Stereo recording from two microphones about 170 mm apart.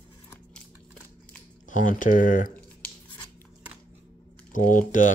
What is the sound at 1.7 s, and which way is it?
Speech, 50° left (ahead or behind).